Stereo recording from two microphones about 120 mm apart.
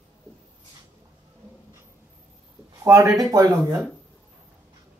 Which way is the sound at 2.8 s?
25° right (ahead or behind).